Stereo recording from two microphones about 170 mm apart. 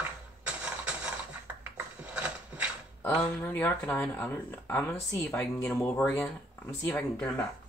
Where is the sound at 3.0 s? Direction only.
10° left (ahead or behind).